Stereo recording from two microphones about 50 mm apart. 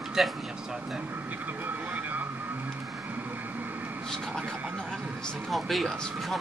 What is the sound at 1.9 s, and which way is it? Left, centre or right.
Vehicle, right.